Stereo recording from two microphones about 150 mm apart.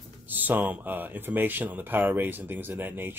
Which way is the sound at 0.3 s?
10° right (ahead or behind).